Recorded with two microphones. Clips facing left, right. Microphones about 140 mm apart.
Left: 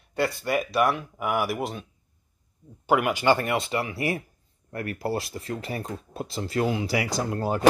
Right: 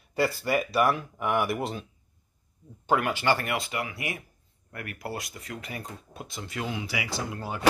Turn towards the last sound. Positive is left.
turn(degrees=45)  # may be behind; listen again after turning